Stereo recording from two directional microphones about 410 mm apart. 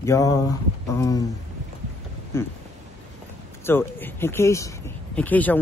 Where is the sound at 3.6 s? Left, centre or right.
Centre.